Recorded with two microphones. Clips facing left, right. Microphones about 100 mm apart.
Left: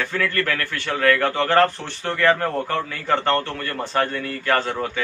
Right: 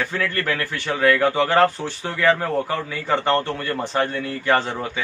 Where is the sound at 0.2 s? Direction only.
20° right (ahead or behind).